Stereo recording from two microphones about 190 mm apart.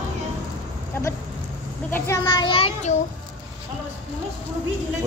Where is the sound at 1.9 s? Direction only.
15° left (ahead or behind).